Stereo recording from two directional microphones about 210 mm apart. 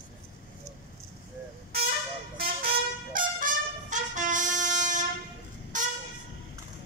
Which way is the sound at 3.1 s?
40° right (ahead or behind).